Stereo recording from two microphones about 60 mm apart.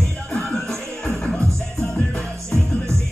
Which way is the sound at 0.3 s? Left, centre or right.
Centre.